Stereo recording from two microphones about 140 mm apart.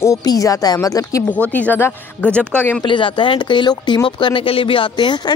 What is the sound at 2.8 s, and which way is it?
Speech, 35° left (ahead or behind).